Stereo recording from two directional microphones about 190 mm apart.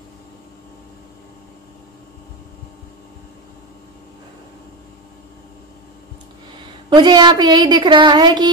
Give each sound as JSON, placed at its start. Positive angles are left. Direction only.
{"t": 6.6, "sound": "a woman's voice", "side_deg": -25}